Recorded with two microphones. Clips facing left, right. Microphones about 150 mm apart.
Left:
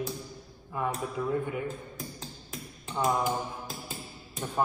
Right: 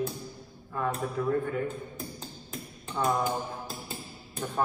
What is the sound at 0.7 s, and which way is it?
Speech, 10° left (ahead or behind).